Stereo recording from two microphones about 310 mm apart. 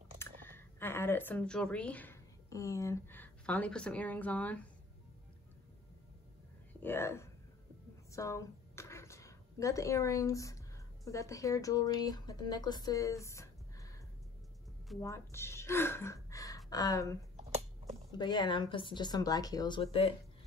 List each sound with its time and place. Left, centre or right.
0.2 s speech: centre
6.8 s speech: centre
8.1 s a sound: centre
11.1 s speech: centre
17.4 s a sound: right
18.1 s speech: centre